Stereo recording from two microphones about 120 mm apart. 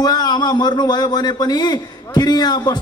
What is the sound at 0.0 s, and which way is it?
A man's voice, 35° left (ahead or behind).